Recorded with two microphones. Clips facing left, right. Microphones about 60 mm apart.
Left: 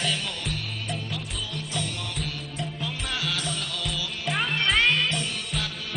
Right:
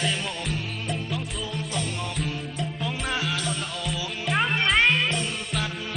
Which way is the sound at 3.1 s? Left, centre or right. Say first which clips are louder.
Right 2 dB; right.